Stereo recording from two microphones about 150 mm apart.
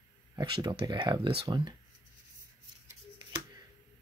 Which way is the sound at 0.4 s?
25° right (ahead or behind).